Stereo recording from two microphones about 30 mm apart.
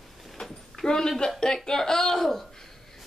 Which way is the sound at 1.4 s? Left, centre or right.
Left.